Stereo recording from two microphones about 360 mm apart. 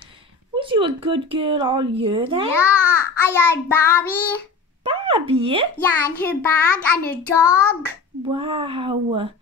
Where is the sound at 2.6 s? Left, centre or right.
Centre.